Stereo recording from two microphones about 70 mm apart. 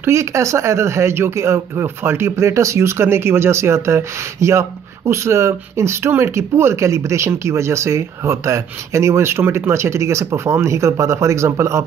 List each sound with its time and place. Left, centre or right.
0.0 s speech: right